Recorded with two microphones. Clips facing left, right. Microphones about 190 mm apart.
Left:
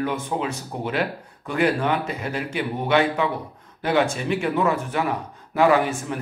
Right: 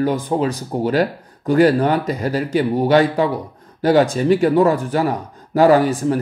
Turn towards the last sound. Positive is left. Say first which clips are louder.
# right 6 dB
turn(degrees=-35)  # may be behind; listen again after turning